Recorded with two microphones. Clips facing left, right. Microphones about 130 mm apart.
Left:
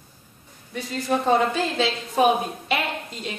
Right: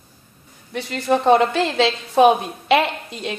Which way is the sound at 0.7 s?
75° right (ahead or behind).